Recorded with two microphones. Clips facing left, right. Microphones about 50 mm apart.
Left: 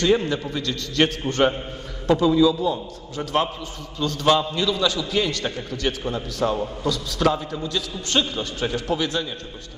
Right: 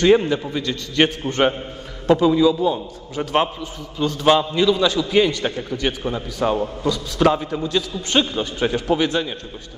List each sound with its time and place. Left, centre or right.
0.0 s a man's voice: right
7.2 s a man's voice: right